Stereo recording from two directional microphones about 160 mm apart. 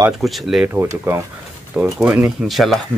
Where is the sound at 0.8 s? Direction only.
15° right (ahead or behind); by 2.8 s centre (ahead or behind).